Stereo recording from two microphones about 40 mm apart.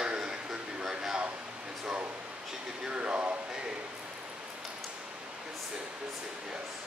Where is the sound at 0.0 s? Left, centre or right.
Centre.